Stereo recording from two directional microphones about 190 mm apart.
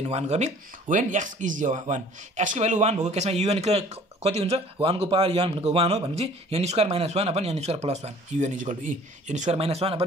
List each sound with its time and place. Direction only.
0.1 s speech: 35° right (ahead or behind)